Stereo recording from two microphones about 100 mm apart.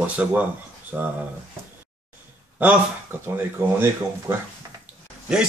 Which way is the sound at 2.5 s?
20° right (ahead or behind).